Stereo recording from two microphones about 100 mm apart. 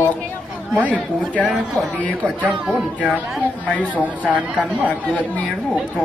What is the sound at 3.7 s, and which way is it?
Speech, 15° left (ahead or behind).